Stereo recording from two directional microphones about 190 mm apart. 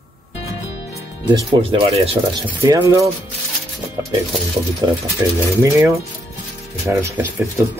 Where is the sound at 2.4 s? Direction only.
15° right (ahead or behind).